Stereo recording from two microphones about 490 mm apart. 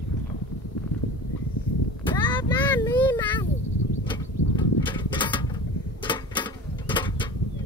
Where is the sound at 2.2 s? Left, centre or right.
Centre.